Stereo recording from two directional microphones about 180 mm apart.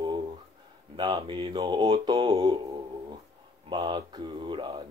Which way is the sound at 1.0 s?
25° right (ahead or behind).